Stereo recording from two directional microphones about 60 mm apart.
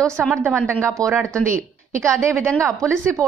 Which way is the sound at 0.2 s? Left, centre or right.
Centre.